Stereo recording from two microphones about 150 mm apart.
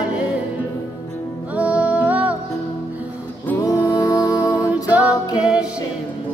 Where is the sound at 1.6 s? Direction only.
10° right (ahead or behind).